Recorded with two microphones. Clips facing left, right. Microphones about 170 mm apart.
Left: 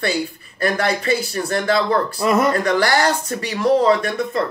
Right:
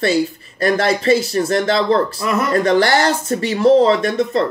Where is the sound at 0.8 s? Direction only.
30° right (ahead or behind).